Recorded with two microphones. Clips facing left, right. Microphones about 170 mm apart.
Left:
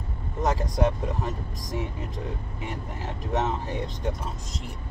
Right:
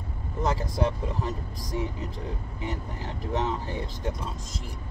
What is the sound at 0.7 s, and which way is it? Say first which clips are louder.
Speech: left 2 dB; 20° left (ahead or behind).